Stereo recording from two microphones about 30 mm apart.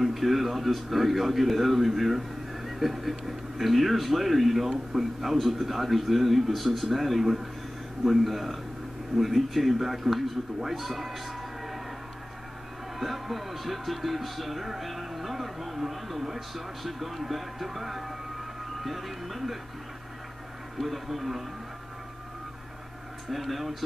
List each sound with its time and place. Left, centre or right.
0.0 s speech: centre
13.0 s speech: centre
20.7 s speech: centre
23.3 s speech: centre